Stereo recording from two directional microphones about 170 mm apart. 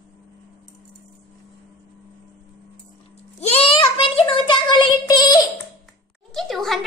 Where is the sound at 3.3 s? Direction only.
35° left (ahead or behind).